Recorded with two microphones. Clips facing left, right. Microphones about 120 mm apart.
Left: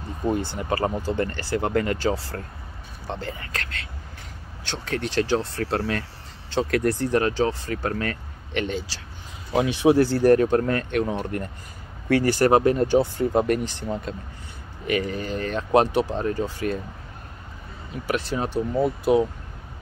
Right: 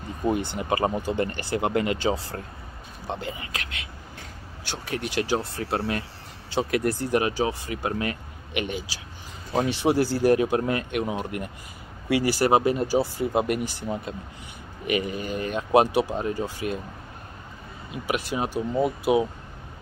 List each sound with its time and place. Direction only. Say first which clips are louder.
0.2 s speech: even; 15° right (ahead or behind)
17.9 s speech: left 1 dB; 10° right (ahead or behind)